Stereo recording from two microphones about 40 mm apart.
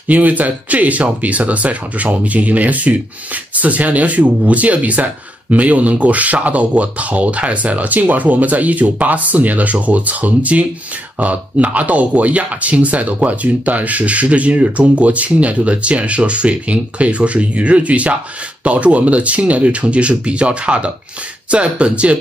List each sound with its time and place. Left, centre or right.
0.1 s speech: right